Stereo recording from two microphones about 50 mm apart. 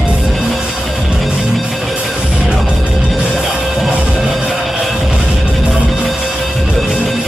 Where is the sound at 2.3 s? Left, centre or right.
Centre.